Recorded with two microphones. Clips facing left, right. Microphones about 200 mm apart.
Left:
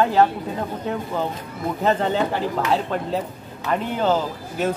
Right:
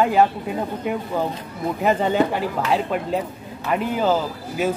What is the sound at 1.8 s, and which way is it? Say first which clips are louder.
Speech: right 1 dB; 10° right (ahead or behind).